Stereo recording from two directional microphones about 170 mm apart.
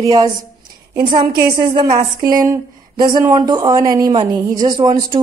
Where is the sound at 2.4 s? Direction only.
25° right (ahead or behind).